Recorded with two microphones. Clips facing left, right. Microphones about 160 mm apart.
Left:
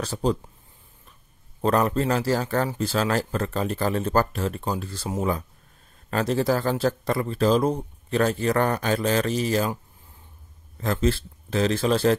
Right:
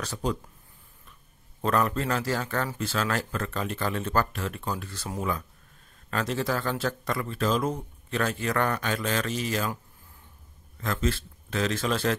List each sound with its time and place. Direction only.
0.0 s speech: 30° left (ahead or behind)
1.6 s speech: 35° left (ahead or behind)
10.8 s speech: 35° left (ahead or behind)